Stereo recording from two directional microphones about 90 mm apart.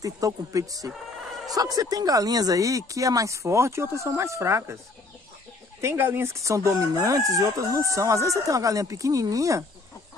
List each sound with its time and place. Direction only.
0.0 s crowing: 40° right (ahead or behind)
5.8 s crowing: 25° right (ahead or behind)